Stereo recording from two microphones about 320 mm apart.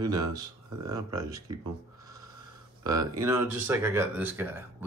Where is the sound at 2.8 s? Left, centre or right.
Centre.